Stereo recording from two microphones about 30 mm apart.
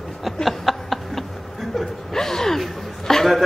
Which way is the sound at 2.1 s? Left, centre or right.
Centre.